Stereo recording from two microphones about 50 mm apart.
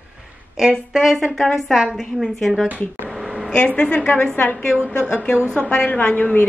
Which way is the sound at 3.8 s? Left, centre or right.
Left.